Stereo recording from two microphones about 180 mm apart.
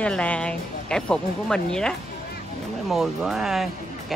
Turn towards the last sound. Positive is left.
turn(degrees=0)  # may be behind; listen again after turning